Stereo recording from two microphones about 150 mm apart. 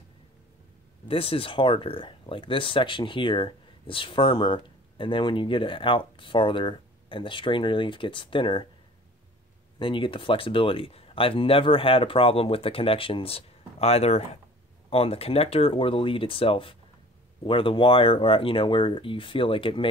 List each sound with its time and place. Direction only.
1.0 s speech: 40° left (ahead or behind)
9.8 s speech: 35° left (ahead or behind)